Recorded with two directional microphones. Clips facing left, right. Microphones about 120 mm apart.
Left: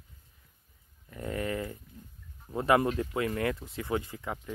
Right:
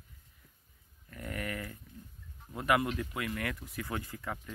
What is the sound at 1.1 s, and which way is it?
Speech, 25° left (ahead or behind).